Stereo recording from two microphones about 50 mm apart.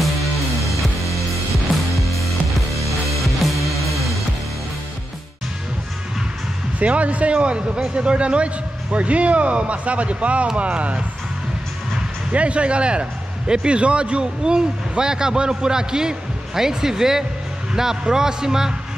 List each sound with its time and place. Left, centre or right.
0.0 s music: centre
3.3 s music: centre
6.8 s speech: right
12.3 s a man's voice: right